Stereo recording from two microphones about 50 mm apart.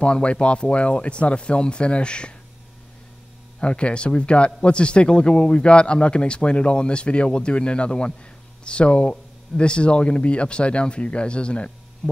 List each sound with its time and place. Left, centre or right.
0.0 s a man's voice: left
3.5 s a man's voice: left
12.0 s hum: centre